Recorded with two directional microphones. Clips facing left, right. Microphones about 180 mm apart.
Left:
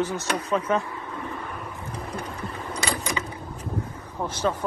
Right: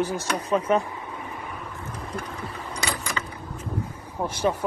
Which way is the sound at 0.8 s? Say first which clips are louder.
Even; 15° right (ahead or behind).